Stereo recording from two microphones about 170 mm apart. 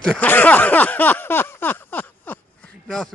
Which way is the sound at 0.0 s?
5° left (ahead or behind).